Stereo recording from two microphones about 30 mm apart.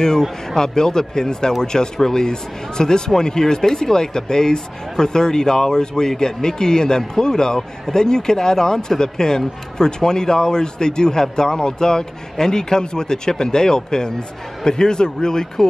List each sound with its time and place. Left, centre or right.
0.6 s speech: left